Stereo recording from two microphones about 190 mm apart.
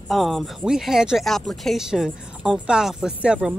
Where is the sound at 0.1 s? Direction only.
Centre (ahead or behind).